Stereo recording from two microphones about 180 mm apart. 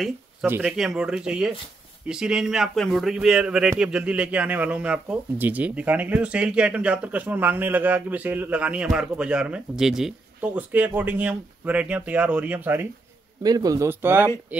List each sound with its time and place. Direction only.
0.5 s speech: 5° right (ahead or behind)
13.4 s speech: 20° right (ahead or behind)